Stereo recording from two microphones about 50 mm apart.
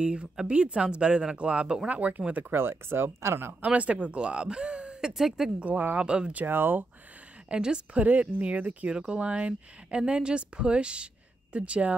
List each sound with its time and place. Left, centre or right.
0.0 s speech: right
2.5 s speech: right
3.6 s speech: right
5.1 s speech: centre
5.6 s speech: right
6.0 s speech: right
6.3 s speech: right
7.4 s speech: centre